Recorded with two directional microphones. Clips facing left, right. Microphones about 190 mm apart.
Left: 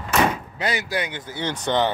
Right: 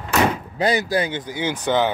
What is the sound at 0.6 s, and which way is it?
Speech, 35° right (ahead or behind).